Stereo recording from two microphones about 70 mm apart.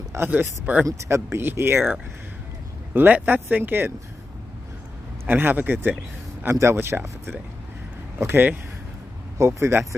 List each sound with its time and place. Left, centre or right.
0.3 s speech: right
0.8 s speech: right
5.2 s speech: right
6.5 s speech: right
9.4 s speech: right